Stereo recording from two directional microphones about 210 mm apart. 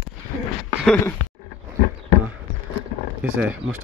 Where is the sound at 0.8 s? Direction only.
5° left (ahead or behind).